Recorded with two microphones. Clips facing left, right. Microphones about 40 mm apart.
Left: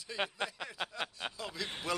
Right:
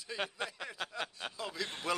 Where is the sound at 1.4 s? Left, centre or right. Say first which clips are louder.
Right 3 dB; centre.